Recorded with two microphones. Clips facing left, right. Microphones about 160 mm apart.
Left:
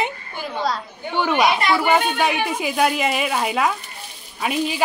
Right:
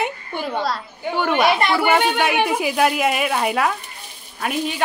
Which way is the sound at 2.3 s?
70° right (ahead or behind).